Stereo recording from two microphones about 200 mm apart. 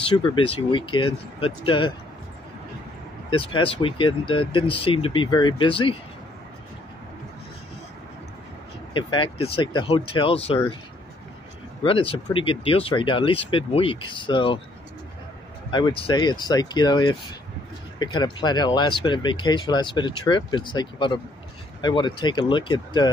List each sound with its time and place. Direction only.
0.3 s speech: 25° left (ahead or behind)
3.3 s speech: 25° left (ahead or behind)
8.9 s speech: 25° left (ahead or behind)
11.8 s speech: 25° left (ahead or behind)
15.7 s speech: 20° left (ahead or behind)